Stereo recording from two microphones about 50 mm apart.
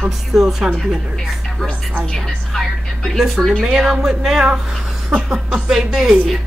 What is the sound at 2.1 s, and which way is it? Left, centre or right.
A woman's voice, centre.